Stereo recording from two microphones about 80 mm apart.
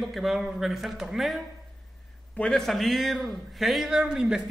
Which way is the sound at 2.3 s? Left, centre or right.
Centre.